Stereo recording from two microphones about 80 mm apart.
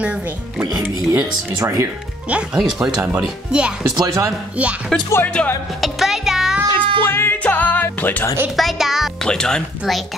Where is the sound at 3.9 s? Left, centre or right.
Right.